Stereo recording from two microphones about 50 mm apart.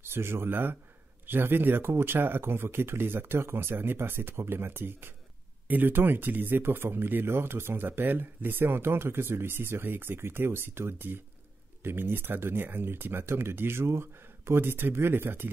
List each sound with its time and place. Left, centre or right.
0.1 s speech: right